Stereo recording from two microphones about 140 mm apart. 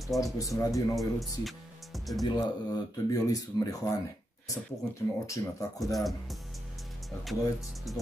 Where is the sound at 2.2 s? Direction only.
30° left (ahead or behind).